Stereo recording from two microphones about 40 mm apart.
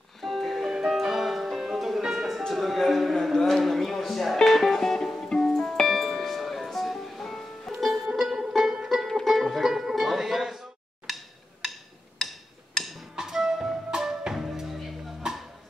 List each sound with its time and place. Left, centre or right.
0.2 s music: centre
0.7 s music: centre
3.3 s a sound: centre
4.4 s music: centre
5.9 s music: centre
7.7 s music: centre
9.0 s music: centre
12.7 s music: centre
13.1 s music: centre